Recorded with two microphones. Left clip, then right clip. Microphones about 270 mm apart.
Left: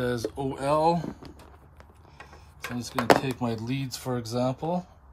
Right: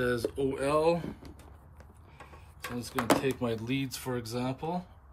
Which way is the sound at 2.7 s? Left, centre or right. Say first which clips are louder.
Left 7 dB; centre.